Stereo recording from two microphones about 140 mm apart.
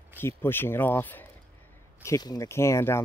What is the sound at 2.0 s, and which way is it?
Speech, 25° left (ahead or behind).